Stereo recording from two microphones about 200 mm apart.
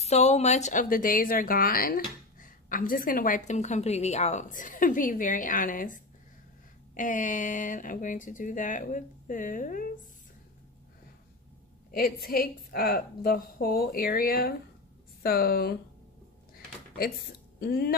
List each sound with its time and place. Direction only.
0.0 s a woman's voice: 35° left (ahead or behind)
7.0 s a woman's voice: 40° left (ahead or behind)
11.9 s a woman's voice: 50° left (ahead or behind)
16.9 s speech: 50° left (ahead or behind)